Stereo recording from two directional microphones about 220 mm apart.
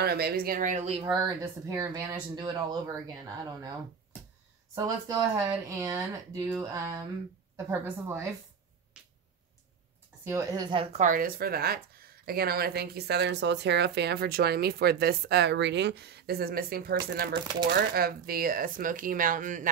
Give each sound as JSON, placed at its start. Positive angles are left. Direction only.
{"t": 0.0, "sound": "speech", "side_deg": -45}
{"t": 1.0, "sound": "speech", "side_deg": -15}
{"t": 2.3, "sound": "speech", "side_deg": -20}
{"t": 4.7, "sound": "speech", "side_deg": -15}
{"t": 10.2, "sound": "a woman's voice", "side_deg": -15}